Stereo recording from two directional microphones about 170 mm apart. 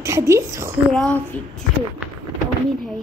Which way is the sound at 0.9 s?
5° left (ahead or behind).